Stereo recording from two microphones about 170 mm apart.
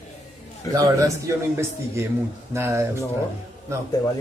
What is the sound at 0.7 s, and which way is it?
A man's voice, 20° right (ahead or behind).